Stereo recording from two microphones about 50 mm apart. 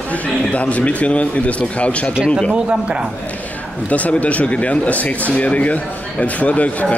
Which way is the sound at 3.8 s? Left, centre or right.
Left.